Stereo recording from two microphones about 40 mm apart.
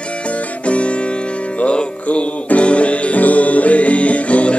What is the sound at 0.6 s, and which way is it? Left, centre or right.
Music, left.